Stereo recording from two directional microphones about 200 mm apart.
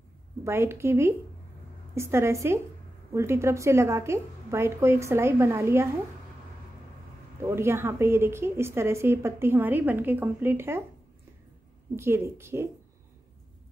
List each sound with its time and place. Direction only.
0.4 s a woman's voice: 15° right (ahead or behind)
7.4 s a woman's voice: 15° right (ahead or behind)
11.9 s a woman's voice: 10° right (ahead or behind)